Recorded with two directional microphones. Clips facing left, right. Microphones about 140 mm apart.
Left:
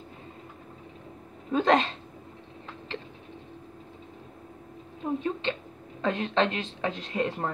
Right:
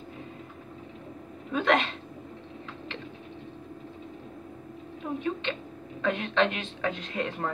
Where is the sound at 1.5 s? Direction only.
35° left (ahead or behind).